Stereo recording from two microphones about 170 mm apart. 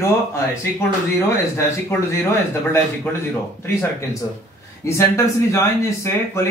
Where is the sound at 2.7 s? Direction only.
15° left (ahead or behind).